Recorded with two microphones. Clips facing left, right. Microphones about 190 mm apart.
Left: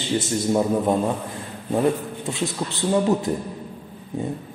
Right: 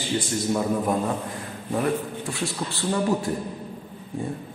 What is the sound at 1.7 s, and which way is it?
A man's voice, 20° left (ahead or behind).